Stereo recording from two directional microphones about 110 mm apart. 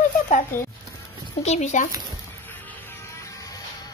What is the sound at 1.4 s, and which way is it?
Speech, 90° left.